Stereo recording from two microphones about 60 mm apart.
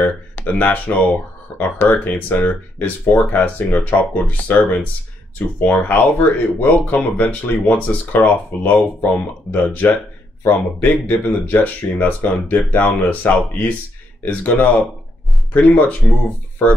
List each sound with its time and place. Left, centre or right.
0.0 s speech: left
15.7 s speech: left